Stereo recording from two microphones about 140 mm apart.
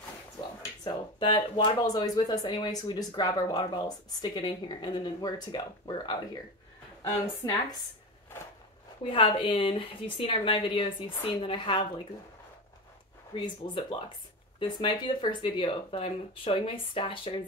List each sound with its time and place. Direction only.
0.6 s speech: 30° left (ahead or behind)
7.4 s speech: 25° left (ahead or behind)
9.0 s a woman's voice: 40° left (ahead or behind)
13.3 s a woman's voice: 35° left (ahead or behind)